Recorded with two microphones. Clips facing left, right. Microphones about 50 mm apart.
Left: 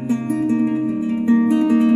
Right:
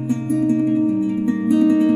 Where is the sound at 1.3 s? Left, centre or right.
Left.